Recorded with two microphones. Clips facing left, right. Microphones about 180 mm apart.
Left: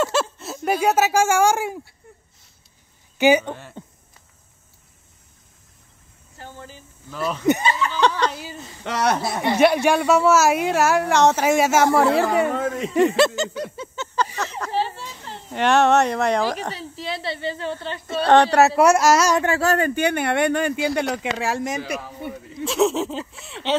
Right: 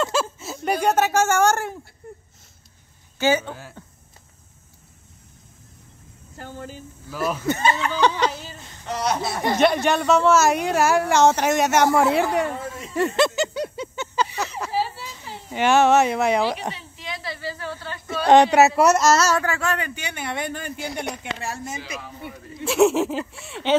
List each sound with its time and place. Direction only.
0.0 s speech: centre (ahead or behind)
3.2 s speech: 15° left (ahead or behind)
6.3 s speech: 45° right (ahead or behind)
7.1 s speech: 5° right (ahead or behind)
7.6 s speech: 50° right (ahead or behind)
8.4 s speech: 5° left (ahead or behind)
8.8 s speech: 80° left
9.6 s speech: 10° left (ahead or behind)
12.5 s speech: 85° left
13.4 s a sound: 10° right (ahead or behind)
16.7 s a woman's voice: 35° left (ahead or behind)
18.2 s speech: 10° right (ahead or behind); by 19.4 s 15° left (ahead or behind)
19.4 s speech: 35° left (ahead or behind); by 21.8 s 90° left
22.7 s speech: 5° right (ahead or behind)